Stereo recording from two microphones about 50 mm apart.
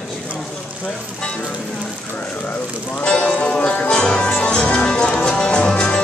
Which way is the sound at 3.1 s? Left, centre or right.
Left.